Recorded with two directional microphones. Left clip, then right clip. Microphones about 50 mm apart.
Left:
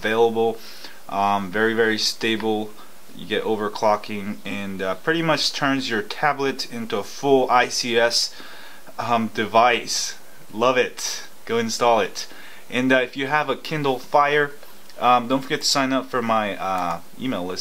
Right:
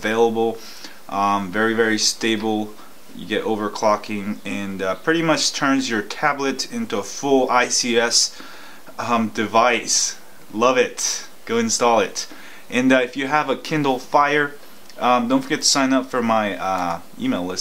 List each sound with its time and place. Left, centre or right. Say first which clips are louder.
0.0 s speech: right 1 dB; right
17.2 s speech: right 5 dB; centre